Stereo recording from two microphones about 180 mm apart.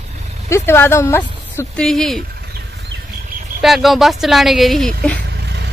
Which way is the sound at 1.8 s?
5° left (ahead or behind).